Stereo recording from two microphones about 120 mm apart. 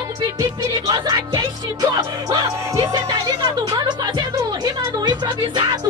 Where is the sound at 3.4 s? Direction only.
35° right (ahead or behind).